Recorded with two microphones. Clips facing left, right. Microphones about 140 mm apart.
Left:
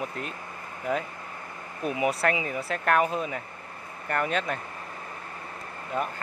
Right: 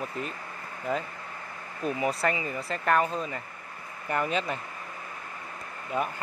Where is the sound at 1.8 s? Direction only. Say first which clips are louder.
Left 2 dB; 10° left (ahead or behind).